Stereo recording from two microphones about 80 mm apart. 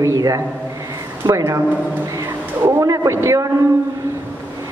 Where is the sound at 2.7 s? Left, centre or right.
Right.